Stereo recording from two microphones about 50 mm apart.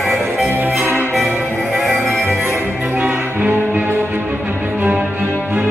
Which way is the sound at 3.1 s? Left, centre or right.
Right.